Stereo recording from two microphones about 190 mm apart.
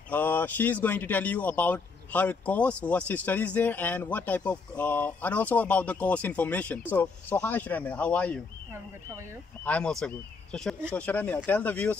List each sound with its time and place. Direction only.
0.1 s a man's voice: 10° left (ahead or behind)
8.7 s speech: 15° right (ahead or behind)
9.7 s a man's voice: 5° left (ahead or behind)